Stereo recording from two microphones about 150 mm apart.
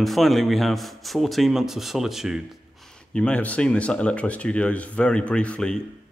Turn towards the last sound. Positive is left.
turn(degrees=5)  # may be behind; listen again after turning